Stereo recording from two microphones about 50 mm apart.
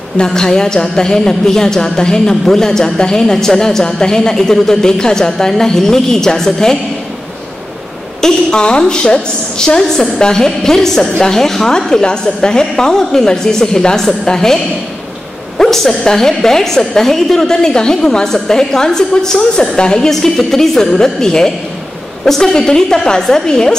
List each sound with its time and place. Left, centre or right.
0.2 s a woman's voice: centre
8.2 s a woman's voice: centre